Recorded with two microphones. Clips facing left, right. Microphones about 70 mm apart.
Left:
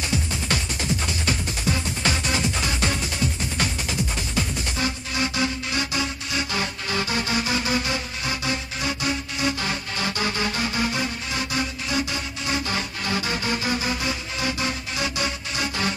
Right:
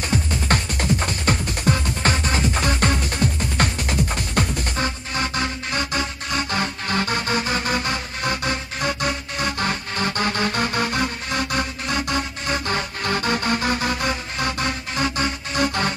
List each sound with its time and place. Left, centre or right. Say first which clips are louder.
0.0 s music: right 3 dB; right